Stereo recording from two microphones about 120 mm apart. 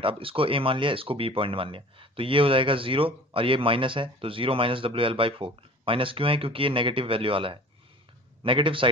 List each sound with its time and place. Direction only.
0.0 s speech: 50° right (ahead or behind)